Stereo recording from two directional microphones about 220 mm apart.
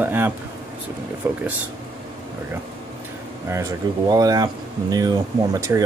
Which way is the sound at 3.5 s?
15° right (ahead or behind).